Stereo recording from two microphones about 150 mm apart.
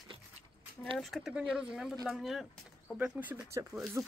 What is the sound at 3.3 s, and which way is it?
Speech, 20° right (ahead or behind).